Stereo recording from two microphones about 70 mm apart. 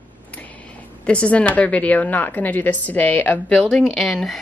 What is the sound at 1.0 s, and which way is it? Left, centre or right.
A woman's voice, centre.